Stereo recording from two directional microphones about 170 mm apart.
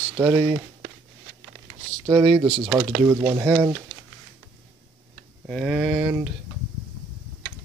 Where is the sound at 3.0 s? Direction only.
15° right (ahead or behind).